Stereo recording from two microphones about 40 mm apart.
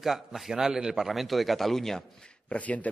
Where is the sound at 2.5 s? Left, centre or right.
Left.